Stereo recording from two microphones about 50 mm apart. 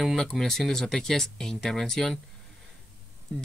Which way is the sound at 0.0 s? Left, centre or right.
Centre.